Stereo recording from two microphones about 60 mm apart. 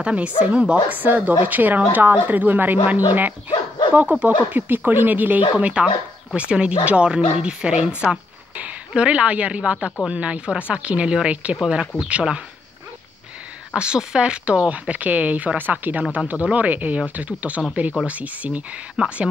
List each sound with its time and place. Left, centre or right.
0.0 s speech: right
0.8 s speech: right
13.7 s speech: centre